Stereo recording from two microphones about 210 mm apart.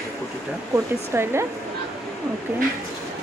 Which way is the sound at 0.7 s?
15° right (ahead or behind).